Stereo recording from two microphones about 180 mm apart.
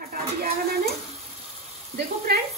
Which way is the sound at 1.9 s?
60° right (ahead or behind).